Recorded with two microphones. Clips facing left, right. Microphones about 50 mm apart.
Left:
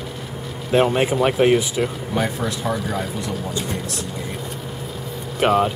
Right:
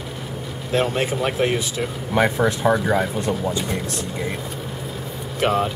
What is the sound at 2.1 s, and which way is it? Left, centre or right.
Speech, right.